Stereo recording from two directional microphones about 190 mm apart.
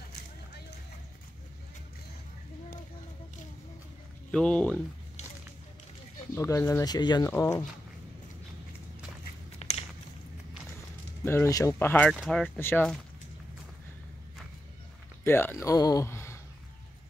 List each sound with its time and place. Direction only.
4.3 s speech: 5° left (ahead or behind)
6.3 s speech: 15° left (ahead or behind)
9.6 s a sound: 35° left (ahead or behind)
11.2 s speech: 15° left (ahead or behind)
15.2 s speech: 10° left (ahead or behind)